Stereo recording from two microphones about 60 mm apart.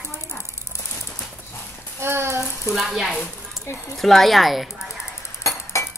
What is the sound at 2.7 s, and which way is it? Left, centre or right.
Speech, centre.